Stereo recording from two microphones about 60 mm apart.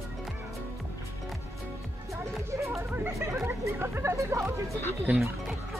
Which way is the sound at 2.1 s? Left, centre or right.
Right.